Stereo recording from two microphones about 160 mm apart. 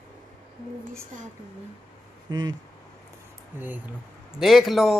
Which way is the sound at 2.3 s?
25° right (ahead or behind).